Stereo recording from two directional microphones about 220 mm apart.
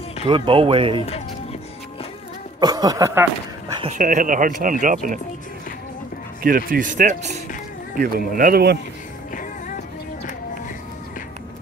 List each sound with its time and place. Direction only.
0.3 s speech: 25° right (ahead or behind)
2.6 s speech: 15° right (ahead or behind)
4.0 s speech: 35° right (ahead or behind)
6.4 s speech: 40° right (ahead or behind)
9.3 s music: 40° left (ahead or behind)